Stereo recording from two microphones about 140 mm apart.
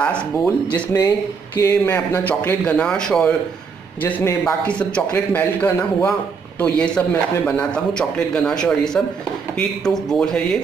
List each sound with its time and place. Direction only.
0.0 s speech: 10° left (ahead or behind)
1.6 s speech: 25° left (ahead or behind); by 3.3 s 5° left (ahead or behind)
4.0 s speech: 20° left (ahead or behind)